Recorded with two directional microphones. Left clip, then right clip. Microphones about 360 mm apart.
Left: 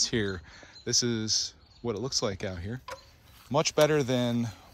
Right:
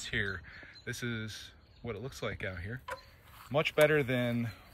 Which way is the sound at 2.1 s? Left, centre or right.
Centre.